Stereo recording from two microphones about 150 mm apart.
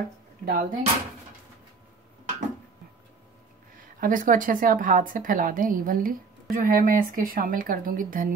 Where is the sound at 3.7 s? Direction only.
65° right (ahead or behind).